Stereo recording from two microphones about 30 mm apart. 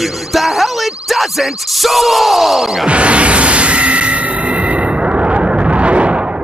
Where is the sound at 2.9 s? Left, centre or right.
Right.